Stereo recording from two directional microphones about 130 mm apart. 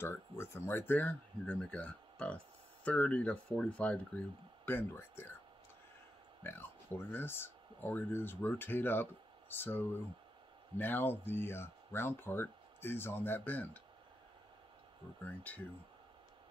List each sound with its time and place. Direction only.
0.0 s speech: 20° left (ahead or behind)
6.4 s speech: 15° left (ahead or behind)
15.2 s speech: 15° left (ahead or behind)